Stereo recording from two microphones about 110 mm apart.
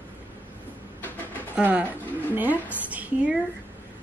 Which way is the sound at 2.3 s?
15° right (ahead or behind).